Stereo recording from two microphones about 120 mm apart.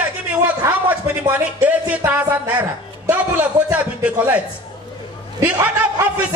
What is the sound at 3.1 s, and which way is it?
A woman's voice, 10° right (ahead or behind).